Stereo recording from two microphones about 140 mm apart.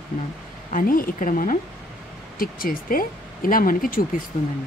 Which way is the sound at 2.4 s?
90° left.